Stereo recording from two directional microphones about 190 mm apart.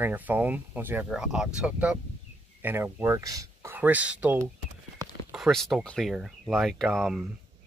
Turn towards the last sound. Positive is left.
turn(degrees=0)  # may be behind; listen again after turning